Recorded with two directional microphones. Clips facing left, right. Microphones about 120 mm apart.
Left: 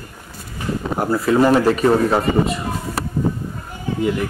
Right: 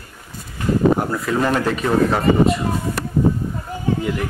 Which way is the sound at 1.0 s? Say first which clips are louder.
Left 5 dB; 5° left (ahead or behind).